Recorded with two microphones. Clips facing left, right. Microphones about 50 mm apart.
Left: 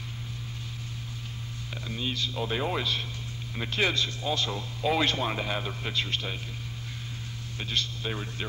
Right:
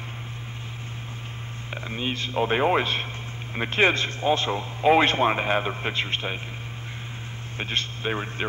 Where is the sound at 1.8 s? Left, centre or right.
Right.